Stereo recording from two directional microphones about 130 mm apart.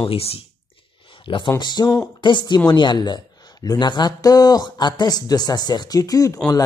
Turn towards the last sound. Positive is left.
turn(degrees=25)  # may be behind; listen again after turning